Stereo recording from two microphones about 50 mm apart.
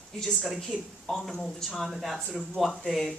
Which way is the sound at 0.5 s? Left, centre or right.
Centre.